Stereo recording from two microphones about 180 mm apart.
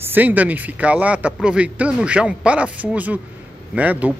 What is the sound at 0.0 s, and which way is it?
Speech, 10° right (ahead or behind).